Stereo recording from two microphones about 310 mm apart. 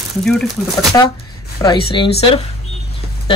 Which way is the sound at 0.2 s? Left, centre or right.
Centre.